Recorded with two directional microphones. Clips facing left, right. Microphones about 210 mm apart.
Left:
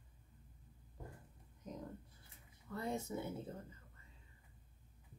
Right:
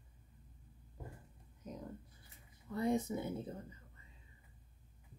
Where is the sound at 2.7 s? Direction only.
15° right (ahead or behind).